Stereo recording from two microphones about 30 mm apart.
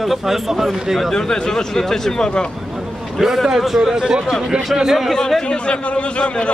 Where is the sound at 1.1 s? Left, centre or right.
Left.